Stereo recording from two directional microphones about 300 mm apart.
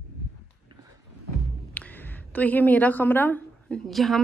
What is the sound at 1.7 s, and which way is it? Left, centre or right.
A woman's voice, centre.